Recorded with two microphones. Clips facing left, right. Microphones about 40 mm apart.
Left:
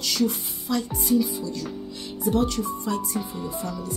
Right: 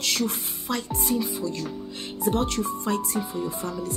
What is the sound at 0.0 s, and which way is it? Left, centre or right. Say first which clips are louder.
Speech: left 2 dB; right.